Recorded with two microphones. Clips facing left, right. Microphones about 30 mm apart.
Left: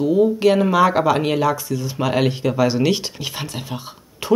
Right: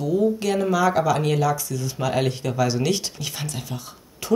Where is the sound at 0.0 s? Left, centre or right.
Left.